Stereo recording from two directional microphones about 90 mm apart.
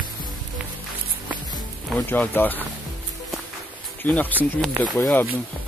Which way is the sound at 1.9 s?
20° left (ahead or behind).